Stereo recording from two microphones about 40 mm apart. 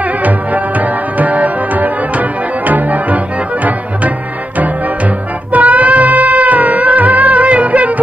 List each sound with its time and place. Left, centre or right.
0.2 s music: right
5.5 s music: right